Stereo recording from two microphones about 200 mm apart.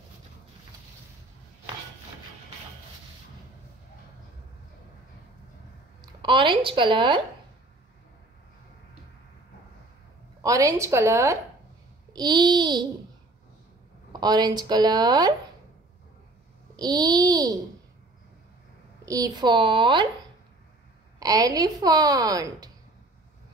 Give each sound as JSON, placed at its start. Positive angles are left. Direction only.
{"t": 5.9, "sound": "a woman's voice", "side_deg": -25}
{"t": 10.4, "sound": "a woman's voice", "side_deg": -15}
{"t": 14.2, "sound": "speech", "side_deg": -20}
{"t": 16.7, "sound": "speech", "side_deg": -20}
{"t": 19.0, "sound": "speech", "side_deg": -20}
{"t": 21.2, "sound": "a woman's voice", "side_deg": -20}